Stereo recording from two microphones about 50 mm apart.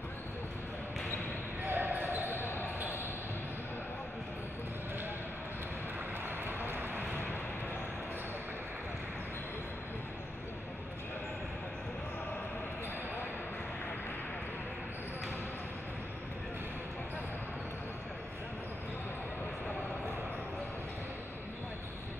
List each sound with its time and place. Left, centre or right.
1.7 s basketball bounce: right
2.3 s basketball bounce: left
6.2 s vehicle: right